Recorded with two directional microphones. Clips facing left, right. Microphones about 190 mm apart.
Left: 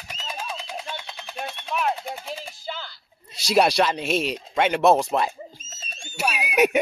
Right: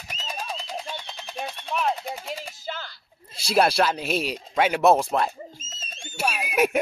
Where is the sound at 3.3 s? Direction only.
Centre (ahead or behind).